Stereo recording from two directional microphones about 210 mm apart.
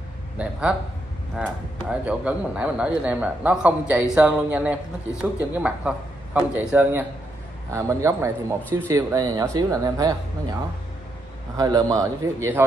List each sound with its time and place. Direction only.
0.4 s speech: 5° right (ahead or behind)
11.5 s speech: 20° right (ahead or behind)